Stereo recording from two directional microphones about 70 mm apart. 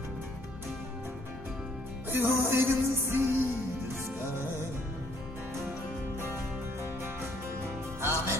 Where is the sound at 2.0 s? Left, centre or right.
Right.